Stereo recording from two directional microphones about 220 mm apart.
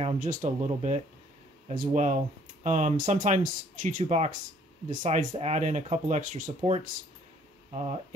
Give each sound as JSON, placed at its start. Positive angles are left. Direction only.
{"t": 0.0, "sound": "speech", "side_deg": -35}
{"t": 7.7, "sound": "speech", "side_deg": -30}